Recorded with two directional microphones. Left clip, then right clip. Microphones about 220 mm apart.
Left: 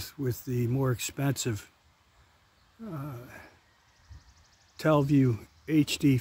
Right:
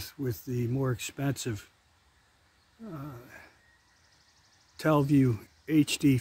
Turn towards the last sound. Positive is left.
turn(degrees=5)  # may be behind; listen again after turning